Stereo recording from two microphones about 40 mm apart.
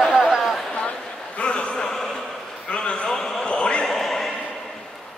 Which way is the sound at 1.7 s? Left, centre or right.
Centre.